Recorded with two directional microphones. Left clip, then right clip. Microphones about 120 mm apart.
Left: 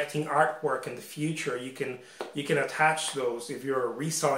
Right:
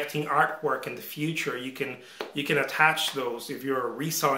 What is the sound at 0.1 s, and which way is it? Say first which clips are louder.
Speech: right 2 dB; 15° right (ahead or behind).